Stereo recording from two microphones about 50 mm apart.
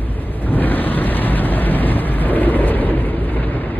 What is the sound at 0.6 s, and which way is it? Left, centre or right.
Vehicle, left.